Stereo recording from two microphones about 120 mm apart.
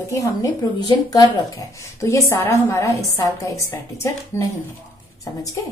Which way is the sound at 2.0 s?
25° left (ahead or behind).